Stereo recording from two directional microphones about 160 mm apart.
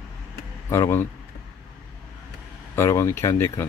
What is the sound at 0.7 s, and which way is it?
Speech, 15° left (ahead or behind).